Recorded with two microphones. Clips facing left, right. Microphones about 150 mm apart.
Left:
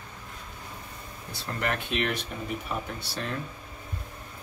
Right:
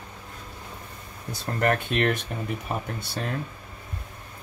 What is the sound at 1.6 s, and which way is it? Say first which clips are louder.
Speech: right 6 dB; 50° right (ahead or behind).